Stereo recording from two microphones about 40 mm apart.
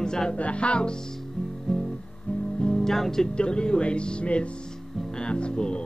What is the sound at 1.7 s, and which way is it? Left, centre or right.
Music, centre.